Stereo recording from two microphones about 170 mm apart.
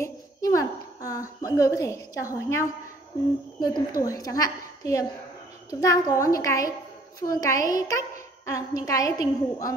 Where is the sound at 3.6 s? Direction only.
20° left (ahead or behind).